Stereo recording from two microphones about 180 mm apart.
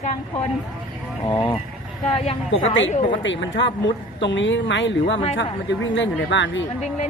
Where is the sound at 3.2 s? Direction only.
90° left.